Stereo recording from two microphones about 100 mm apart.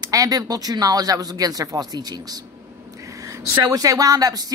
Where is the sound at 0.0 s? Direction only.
35° right (ahead or behind).